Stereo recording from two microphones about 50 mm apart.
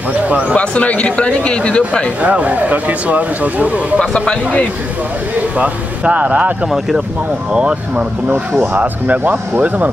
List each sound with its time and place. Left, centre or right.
0.3 s speech: right
0.6 s speech: left
2.2 s speech: right
4.0 s speech: centre
5.6 s speech: right
7.5 s speech: right
8.3 s speech: right